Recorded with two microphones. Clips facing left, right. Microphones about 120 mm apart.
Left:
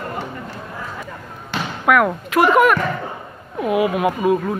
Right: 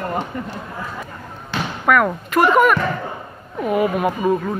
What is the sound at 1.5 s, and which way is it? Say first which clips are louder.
A man's voice: even; 5° left (ahead or behind).